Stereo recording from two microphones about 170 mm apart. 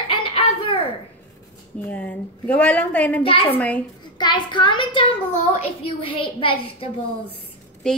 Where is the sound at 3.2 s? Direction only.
30° left (ahead or behind).